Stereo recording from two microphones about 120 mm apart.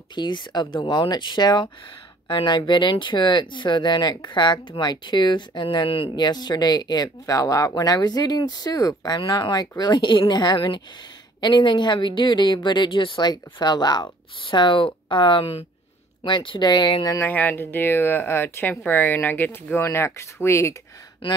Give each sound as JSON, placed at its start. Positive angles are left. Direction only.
{"t": 0.1, "sound": "speech", "side_deg": 40}
{"t": 17.2, "sound": "speech", "side_deg": 15}
{"t": 21.2, "sound": "speech", "side_deg": 45}